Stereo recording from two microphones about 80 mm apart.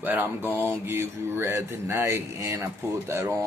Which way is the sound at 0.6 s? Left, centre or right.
Right.